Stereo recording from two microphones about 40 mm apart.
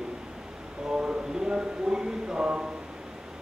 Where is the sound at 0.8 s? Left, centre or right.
Centre.